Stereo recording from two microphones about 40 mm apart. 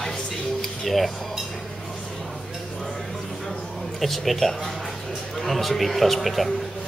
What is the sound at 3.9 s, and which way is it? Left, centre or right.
A man's voice, centre.